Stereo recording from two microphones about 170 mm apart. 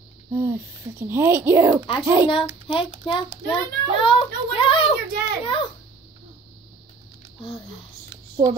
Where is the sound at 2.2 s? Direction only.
30° left (ahead or behind).